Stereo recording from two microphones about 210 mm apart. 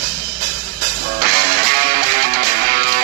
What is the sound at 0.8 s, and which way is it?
Music, 45° right (ahead or behind).